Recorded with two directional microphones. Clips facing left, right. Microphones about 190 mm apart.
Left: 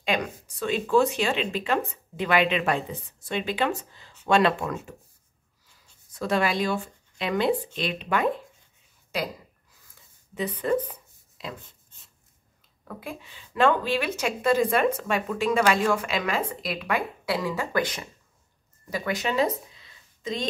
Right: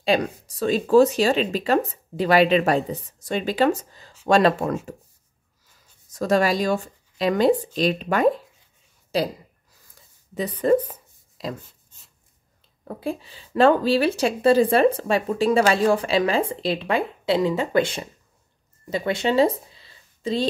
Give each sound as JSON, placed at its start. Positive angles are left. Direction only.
{"t": 0.0, "sound": "a woman's voice", "side_deg": -35}
{"t": 6.1, "sound": "a woman's voice", "side_deg": -40}
{"t": 10.6, "sound": "a sound", "side_deg": -40}
{"t": 12.8, "sound": "a woman's voice", "side_deg": -35}